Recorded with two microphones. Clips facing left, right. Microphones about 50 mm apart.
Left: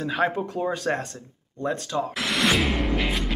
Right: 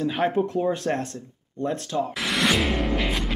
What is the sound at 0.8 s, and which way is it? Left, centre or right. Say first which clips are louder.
Speech: even; left.